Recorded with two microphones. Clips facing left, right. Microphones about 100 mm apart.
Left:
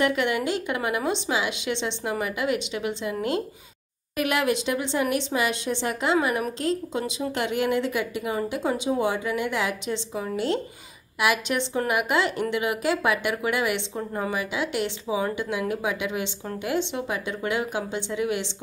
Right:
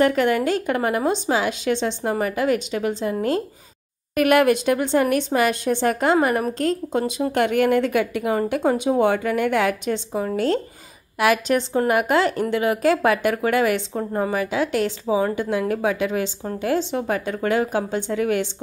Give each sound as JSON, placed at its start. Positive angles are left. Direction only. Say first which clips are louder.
{"t": 0.0, "sound": "a woman's voice", "louder": "right 5 dB", "side_deg": -40}
{"t": 4.1, "sound": "a woman's voice", "louder": "right 8 dB", "side_deg": -55}